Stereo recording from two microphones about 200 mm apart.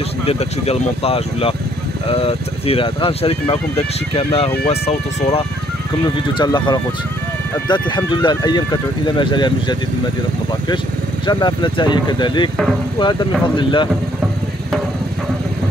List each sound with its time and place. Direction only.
0.3 s speech: 30° left (ahead or behind)
11.2 s speech: 20° left (ahead or behind)
13.6 s speech: 25° left (ahead or behind)